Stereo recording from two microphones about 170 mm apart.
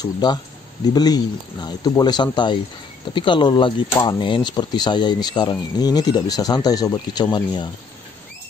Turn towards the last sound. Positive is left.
turn(degrees=25)  # may be behind; listen again after turning